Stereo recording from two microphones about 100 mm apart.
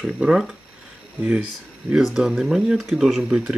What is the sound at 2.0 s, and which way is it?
Speech, 5° right (ahead or behind).